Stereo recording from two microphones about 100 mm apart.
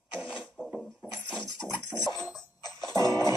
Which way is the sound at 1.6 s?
5° left (ahead or behind).